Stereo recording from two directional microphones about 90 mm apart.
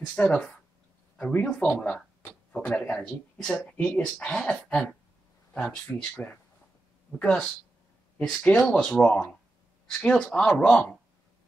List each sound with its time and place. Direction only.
0.1 s speech: 15° left (ahead or behind)